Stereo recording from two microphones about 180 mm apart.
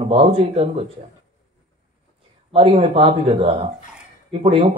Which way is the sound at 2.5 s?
30° right (ahead or behind).